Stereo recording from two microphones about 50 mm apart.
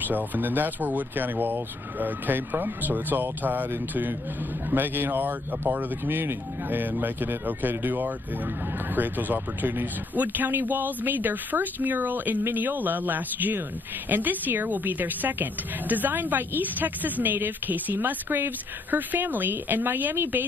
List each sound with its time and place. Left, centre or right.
0.0 s speech: right